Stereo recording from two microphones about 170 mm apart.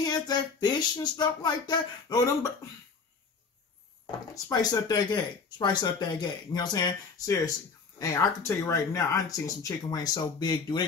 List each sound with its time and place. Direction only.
0.0 s speech: 25° left (ahead or behind)
4.5 s speech: 20° left (ahead or behind)